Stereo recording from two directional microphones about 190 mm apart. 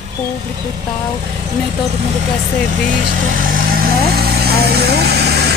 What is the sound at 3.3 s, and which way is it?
Vehicle, 45° right (ahead or behind).